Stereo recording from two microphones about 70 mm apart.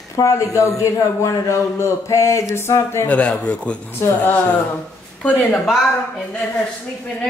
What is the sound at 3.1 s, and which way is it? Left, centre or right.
Speech, centre.